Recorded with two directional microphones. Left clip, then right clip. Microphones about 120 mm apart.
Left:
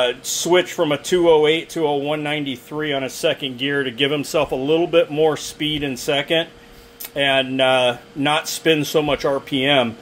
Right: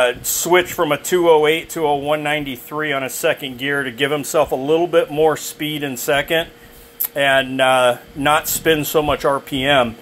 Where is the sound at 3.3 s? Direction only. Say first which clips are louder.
Right 2 dB; 30° left (ahead or behind).